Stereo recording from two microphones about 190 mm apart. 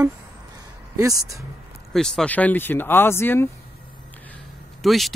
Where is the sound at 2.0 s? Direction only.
5° left (ahead or behind).